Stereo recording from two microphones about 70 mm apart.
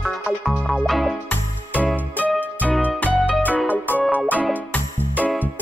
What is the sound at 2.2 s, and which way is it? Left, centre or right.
Music, left.